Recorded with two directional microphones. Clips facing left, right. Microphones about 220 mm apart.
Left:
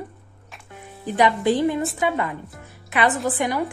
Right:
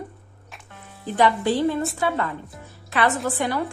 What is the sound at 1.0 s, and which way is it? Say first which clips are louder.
A woman's voice: left 1 dB; 15° left (ahead or behind).